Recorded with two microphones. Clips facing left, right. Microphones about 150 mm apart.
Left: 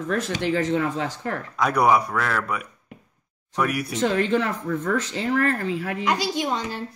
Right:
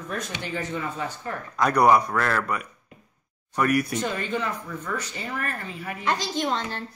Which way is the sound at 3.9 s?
80° left.